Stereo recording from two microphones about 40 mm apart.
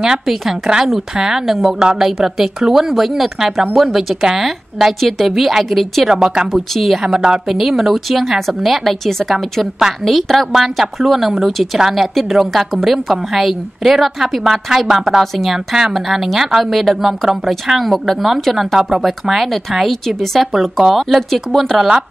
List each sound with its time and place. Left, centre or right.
1.1 s speech: centre
1.4 s a woman's voice: centre
5.0 s a woman's voice: centre
6.0 s speech: centre
6.5 s a woman's voice: centre
7.0 s a woman's voice: centre
7.4 s a woman's voice: centre
21.8 s speech: centre